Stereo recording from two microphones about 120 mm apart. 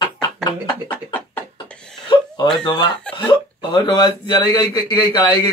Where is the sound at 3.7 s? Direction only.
40° left (ahead or behind).